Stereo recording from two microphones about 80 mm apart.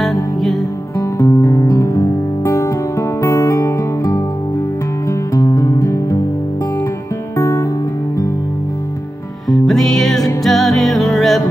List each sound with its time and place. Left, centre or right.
0.0 s music: centre
0.9 s music: left
5.3 s music: left
7.3 s music: left
9.5 s music: centre